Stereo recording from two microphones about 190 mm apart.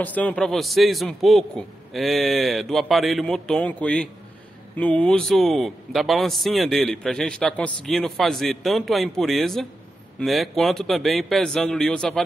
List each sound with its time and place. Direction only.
0.0 s a man's voice: 10° left (ahead or behind)